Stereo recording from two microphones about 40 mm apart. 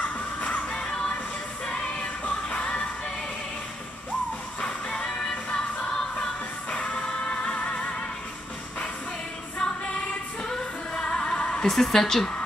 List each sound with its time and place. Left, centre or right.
0.0 s music: left
0.7 s music: left
4.6 s music: left
10.4 s female singing: centre
11.6 s a woman's voice: centre